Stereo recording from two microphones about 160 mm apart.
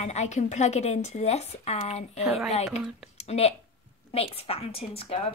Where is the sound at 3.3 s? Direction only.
40° left (ahead or behind).